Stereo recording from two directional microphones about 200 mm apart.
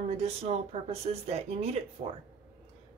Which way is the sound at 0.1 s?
30° right (ahead or behind).